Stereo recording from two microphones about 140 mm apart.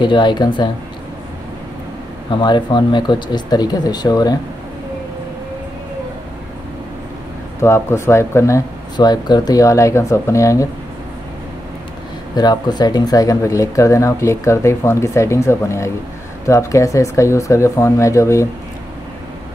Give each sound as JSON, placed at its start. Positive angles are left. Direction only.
{"t": 0.0, "sound": "speech", "side_deg": 35}
{"t": 2.3, "sound": "speech", "side_deg": 35}
{"t": 7.6, "sound": "speech", "side_deg": 20}
{"t": 12.4, "sound": "speech", "side_deg": 30}